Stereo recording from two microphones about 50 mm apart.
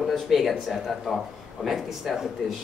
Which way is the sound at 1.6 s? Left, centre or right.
Centre.